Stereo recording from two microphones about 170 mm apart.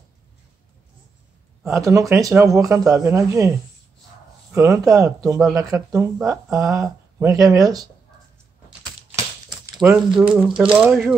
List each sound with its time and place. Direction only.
1.6 s speech: 15° right (ahead or behind)
9.8 s speech: 5° right (ahead or behind)